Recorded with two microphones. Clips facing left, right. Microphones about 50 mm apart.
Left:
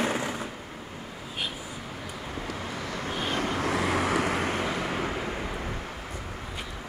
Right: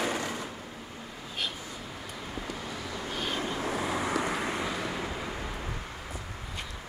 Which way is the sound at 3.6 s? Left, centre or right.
Left.